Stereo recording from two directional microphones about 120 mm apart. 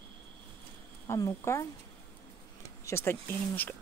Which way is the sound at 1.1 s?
25° left (ahead or behind).